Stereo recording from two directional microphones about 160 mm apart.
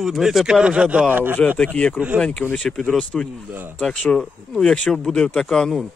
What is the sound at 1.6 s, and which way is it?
Speech, 5° left (ahead or behind).